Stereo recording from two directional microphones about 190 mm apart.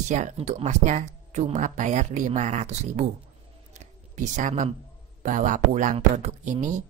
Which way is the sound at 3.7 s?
40° right (ahead or behind).